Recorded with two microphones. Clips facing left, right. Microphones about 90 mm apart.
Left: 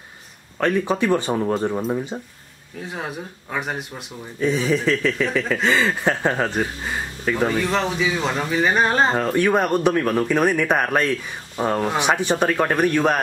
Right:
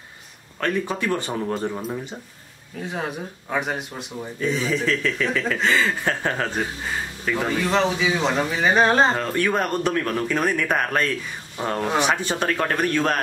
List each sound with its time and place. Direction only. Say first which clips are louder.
0.6 s speech: left 4 dB; 20° left (ahead or behind)
2.9 s speech: right 1 dB; centre (ahead or behind)
4.4 s speech: left 3 dB; 15° left (ahead or behind)
5.9 s speech: left 3 dB; 15° left (ahead or behind)
9.2 s speech: left 4 dB; 15° left (ahead or behind)